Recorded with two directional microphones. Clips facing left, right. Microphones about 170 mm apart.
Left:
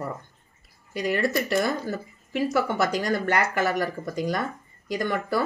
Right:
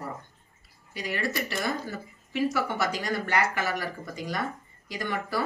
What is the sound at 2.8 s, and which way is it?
Speech, 45° left (ahead or behind).